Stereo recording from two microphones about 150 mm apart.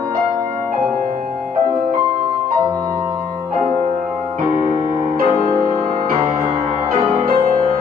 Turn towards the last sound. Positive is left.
turn(degrees=-80)